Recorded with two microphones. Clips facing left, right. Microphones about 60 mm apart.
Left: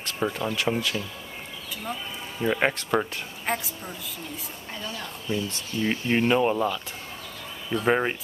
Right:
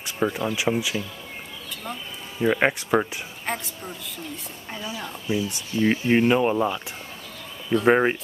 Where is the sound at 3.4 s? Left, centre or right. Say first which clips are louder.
Left 1 dB; centre.